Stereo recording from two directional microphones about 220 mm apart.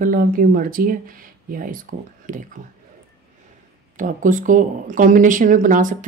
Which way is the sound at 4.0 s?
35° right (ahead or behind).